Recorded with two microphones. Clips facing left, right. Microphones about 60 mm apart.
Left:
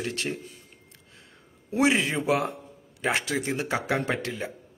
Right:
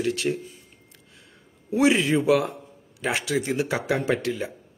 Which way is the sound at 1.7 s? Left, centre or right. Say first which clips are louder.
Right 3 dB; left.